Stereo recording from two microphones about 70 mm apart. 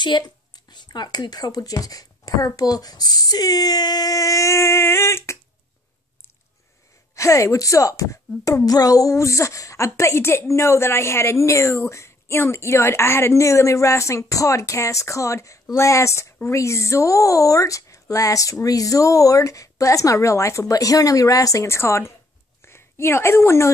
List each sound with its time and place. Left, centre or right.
0.0 s a woman's voice: left
7.2 s a woman's voice: left
21.6 s a woman's voice: left